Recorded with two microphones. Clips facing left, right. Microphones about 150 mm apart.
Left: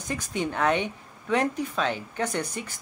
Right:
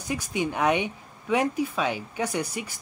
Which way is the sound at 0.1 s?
10° right (ahead or behind).